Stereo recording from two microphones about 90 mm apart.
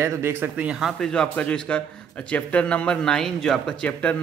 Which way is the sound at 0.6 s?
10° right (ahead or behind).